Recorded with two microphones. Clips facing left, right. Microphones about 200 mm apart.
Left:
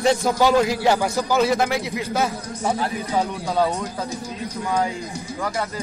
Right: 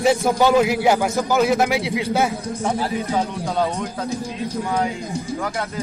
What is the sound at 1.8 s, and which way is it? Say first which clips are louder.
Speech: right 4 dB; 90° right.